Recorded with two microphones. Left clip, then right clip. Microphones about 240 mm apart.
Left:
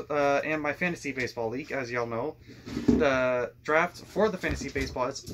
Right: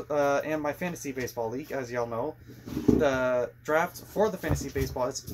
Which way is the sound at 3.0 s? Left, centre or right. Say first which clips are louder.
Left 3 dB; centre.